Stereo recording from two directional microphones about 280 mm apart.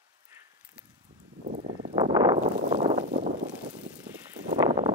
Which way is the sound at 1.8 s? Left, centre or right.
Centre.